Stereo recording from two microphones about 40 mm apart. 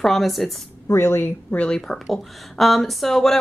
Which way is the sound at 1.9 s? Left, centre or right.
Centre.